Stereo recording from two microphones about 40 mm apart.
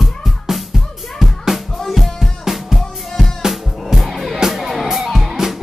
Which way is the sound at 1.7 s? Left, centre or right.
Centre.